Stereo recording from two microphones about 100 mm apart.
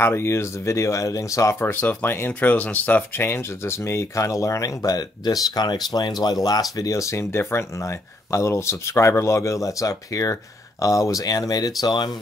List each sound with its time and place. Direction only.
0.0 s speech: 25° left (ahead or behind); by 12.1 s 45° left (ahead or behind)